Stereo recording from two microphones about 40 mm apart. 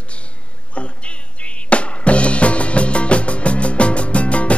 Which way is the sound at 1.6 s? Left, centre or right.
Left.